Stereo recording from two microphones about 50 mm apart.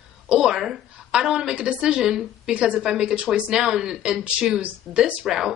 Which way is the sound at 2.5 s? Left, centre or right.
Right.